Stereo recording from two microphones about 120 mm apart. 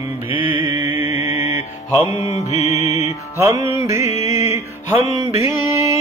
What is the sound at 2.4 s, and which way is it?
Music, 65° left (ahead or behind).